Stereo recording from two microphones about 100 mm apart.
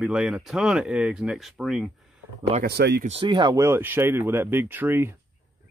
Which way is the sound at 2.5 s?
90° right.